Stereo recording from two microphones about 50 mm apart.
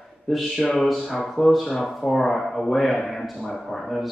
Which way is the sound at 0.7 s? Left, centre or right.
Centre.